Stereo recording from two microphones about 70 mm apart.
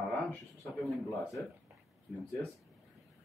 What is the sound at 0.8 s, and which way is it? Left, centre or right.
Speech, centre.